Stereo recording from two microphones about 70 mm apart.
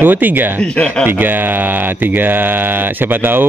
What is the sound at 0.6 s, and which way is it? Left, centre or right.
Speech, centre.